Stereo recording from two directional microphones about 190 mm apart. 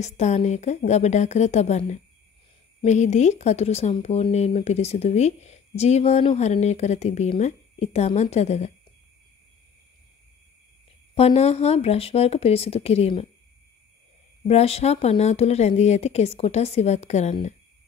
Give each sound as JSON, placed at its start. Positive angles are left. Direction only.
{"t": 0.0, "sound": "speech", "side_deg": 35}
{"t": 11.1, "sound": "speech", "side_deg": 35}
{"t": 14.5, "sound": "speech", "side_deg": 30}